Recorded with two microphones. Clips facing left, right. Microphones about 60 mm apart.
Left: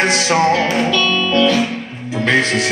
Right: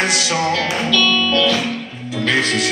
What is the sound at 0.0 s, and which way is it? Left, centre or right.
Music, left.